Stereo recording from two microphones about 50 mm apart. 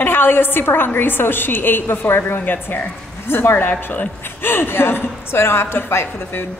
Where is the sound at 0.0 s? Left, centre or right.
Left.